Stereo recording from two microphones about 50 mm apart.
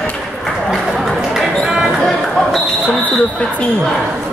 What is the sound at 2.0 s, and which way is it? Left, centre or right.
Basketball bounce, centre.